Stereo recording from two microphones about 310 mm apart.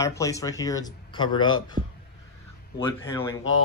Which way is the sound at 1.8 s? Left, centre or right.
Right.